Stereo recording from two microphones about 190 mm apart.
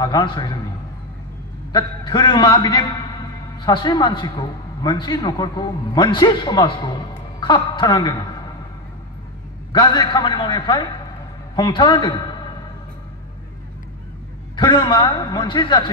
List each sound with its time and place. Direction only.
0.0 s a man's voice: 25° left (ahead or behind)
1.7 s a man's voice: 20° left (ahead or behind)
9.7 s a man's voice: 20° left (ahead or behind)
14.5 s a man's voice: 25° left (ahead or behind)